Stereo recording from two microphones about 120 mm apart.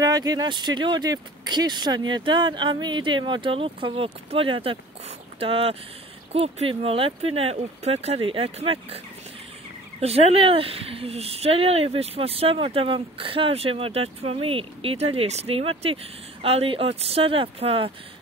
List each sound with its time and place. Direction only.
0.0 s speech: 30° right (ahead or behind); by 17.9 s 50° right (ahead or behind)